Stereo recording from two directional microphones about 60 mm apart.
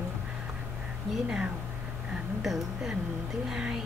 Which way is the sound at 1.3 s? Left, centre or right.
Centre.